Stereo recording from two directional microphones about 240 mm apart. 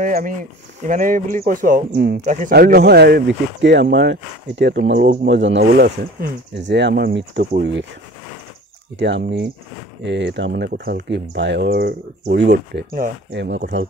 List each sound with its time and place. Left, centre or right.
0.0 s speech: right
8.9 s speech: right